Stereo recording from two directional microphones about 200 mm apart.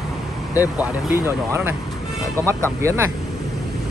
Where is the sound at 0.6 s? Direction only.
10° right (ahead or behind).